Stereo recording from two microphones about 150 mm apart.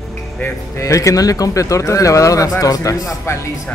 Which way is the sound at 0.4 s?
20° left (ahead or behind).